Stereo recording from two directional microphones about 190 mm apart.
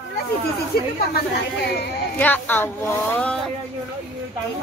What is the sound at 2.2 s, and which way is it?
Speech, 10° left (ahead or behind).